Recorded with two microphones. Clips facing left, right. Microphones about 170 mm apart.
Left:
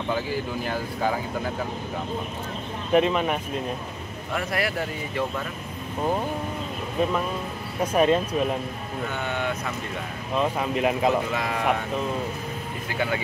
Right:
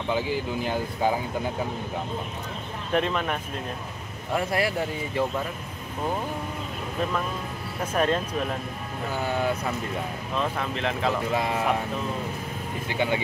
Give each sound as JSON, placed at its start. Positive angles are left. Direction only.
{"t": 0.7, "sound": "speech", "side_deg": -15}
{"t": 2.9, "sound": "speech", "side_deg": 5}
{"t": 4.3, "sound": "speech", "side_deg": -25}
{"t": 7.0, "sound": "speech", "side_deg": 10}
{"t": 9.2, "sound": "speech", "side_deg": -35}
{"t": 10.3, "sound": "speech", "side_deg": 10}
{"t": 11.3, "sound": "speech", "side_deg": -30}
{"t": 12.9, "sound": "speech", "side_deg": -20}